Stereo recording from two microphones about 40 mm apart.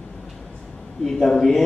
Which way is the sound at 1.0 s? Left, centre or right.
Centre.